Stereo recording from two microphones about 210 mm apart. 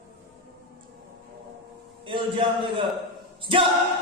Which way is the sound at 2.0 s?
25° right (ahead or behind).